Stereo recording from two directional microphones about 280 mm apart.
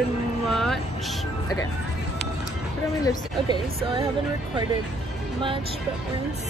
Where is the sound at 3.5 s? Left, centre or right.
Centre.